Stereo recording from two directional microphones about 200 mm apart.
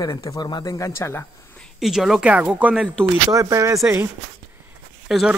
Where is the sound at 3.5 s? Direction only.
15° right (ahead or behind).